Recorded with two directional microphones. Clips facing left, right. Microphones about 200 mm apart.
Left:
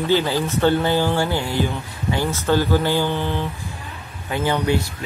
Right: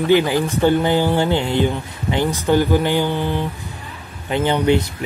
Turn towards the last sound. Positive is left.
turn(degrees=-20)  # may be behind; listen again after turning